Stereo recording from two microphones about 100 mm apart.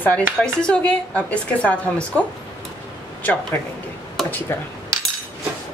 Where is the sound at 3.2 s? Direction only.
20° left (ahead or behind).